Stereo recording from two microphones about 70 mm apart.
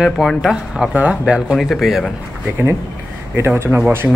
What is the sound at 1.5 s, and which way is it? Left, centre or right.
Speech, centre.